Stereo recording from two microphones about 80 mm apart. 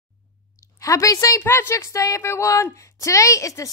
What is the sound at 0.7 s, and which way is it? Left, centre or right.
A woman's voice, left.